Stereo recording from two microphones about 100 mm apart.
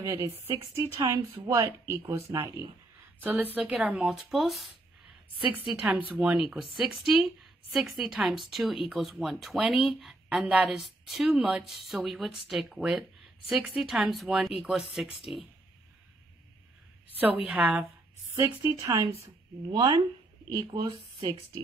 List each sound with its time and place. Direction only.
0.0 s speech: 25° right (ahead or behind)
0.9 s speech: 40° right (ahead or behind)
3.2 s a woman's voice: 15° right (ahead or behind); by 4.7 s centre (ahead or behind)
5.4 s speech: 15° right (ahead or behind)
17.2 s speech: 15° right (ahead or behind)
18.6 s speech: 35° right (ahead or behind)
19.7 s speech: 50° right (ahead or behind)